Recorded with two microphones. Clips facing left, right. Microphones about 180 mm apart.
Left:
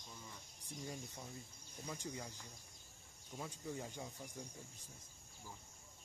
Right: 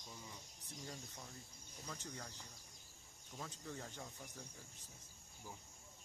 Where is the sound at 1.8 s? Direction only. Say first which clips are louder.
Left 4 dB; 10° left (ahead or behind).